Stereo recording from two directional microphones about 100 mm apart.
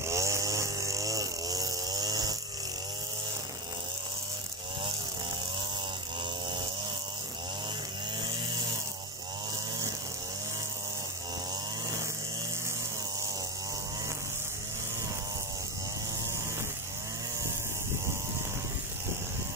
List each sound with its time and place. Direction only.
0.1 s vehicle: 30° right (ahead or behind)